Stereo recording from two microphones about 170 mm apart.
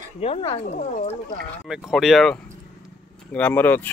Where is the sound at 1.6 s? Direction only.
Centre (ahead or behind).